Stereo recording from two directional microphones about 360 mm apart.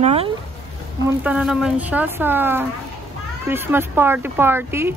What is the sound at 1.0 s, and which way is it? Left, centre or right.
A man's voice, centre.